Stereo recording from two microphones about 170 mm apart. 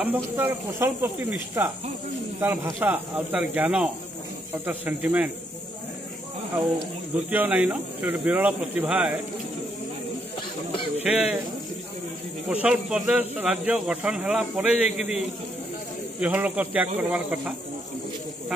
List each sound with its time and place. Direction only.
0.0 s speech: 10° right (ahead or behind)
7.2 s speech: 10° right (ahead or behind)
10.7 s a sound: 30° left (ahead or behind)
11.1 s speech: 5° right (ahead or behind)
12.4 s speech: 5° right (ahead or behind)